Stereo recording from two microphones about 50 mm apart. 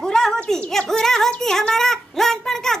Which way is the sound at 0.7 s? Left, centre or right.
Centre.